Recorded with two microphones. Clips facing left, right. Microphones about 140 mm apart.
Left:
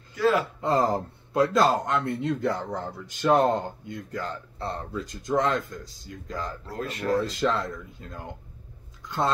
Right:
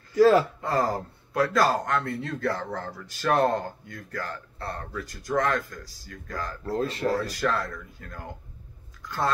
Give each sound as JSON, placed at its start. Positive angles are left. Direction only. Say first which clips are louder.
{"t": 0.1, "sound": "speech", "louder": "right 5 dB", "side_deg": -35}
{"t": 0.6, "sound": "a man's voice", "louder": "left 2 dB", "side_deg": 20}
{"t": 6.7, "sound": "speech", "louder": "right 2 dB", "side_deg": -30}
{"t": 7.2, "sound": "a man's voice", "louder": "left 2 dB", "side_deg": 20}
{"t": 9.0, "sound": "chewing", "louder": "left 1 dB", "side_deg": 20}